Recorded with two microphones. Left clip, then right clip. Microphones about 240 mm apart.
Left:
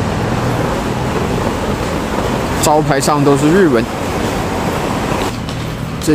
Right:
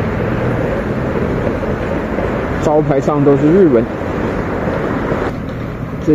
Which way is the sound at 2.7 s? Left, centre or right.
Centre.